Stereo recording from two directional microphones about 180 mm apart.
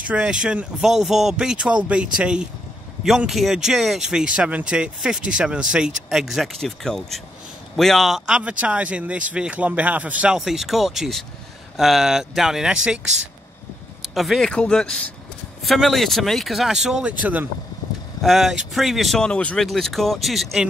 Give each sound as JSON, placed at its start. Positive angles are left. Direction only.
{"t": 0.1, "sound": "speech", "side_deg": -5}